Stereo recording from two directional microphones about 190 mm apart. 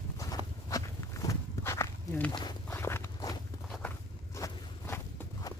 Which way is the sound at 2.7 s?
10° left (ahead or behind).